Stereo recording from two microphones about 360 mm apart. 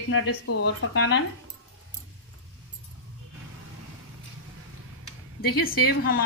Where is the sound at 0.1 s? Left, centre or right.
Left.